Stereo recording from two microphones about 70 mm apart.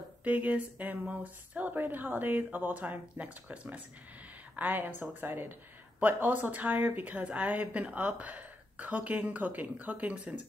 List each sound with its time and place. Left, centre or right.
0.2 s speech: right